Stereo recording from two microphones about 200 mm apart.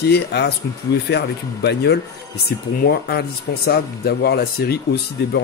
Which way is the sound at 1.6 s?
55° left (ahead or behind).